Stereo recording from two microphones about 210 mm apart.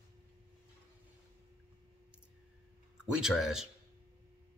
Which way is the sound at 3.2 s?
Centre (ahead or behind).